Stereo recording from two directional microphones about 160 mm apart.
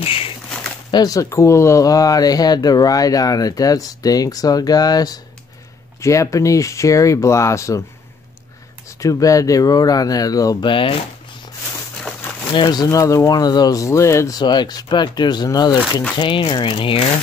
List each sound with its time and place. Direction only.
0.0 s speech: 35° left (ahead or behind)
0.9 s speech: 20° left (ahead or behind)
9.0 s speech: 20° left (ahead or behind)
12.5 s speech: 25° left (ahead or behind)